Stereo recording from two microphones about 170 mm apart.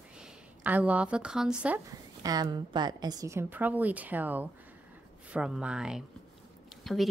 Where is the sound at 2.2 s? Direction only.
20° right (ahead or behind).